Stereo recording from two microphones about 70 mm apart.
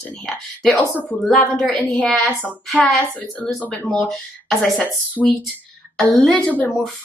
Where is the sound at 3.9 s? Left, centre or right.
Centre.